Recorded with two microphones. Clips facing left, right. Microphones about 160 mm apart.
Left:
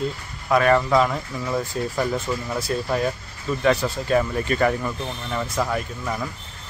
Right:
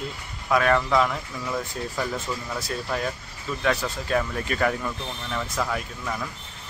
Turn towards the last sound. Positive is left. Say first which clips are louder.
# left 4 dB
turn(degrees=10)  # may be behind; listen again after turning